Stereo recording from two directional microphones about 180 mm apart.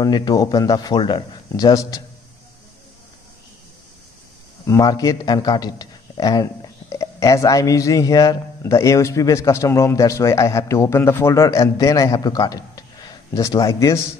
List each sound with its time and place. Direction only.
0.0 s a man's voice: 20° left (ahead or behind)
4.6 s a man's voice: 20° left (ahead or behind)